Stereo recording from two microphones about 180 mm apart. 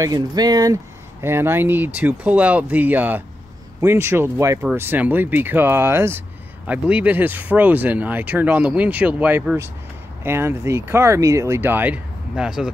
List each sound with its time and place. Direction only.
0.0 s speech: 20° right (ahead or behind); by 12.7 s 5° right (ahead or behind)